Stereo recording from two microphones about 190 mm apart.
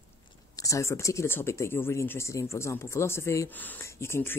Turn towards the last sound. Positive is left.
turn(degrees=10)  # may be behind; listen again after turning